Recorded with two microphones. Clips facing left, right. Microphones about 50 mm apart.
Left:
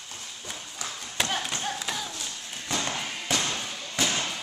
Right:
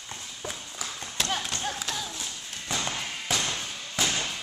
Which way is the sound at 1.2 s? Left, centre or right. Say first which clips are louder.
Left 1 dB; centre.